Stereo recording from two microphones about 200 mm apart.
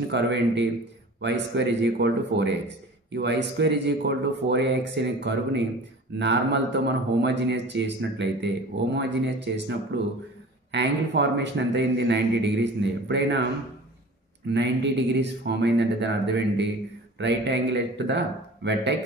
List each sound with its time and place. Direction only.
0.1 s speech: 60° right (ahead or behind)
14.5 s speech: 60° right (ahead or behind)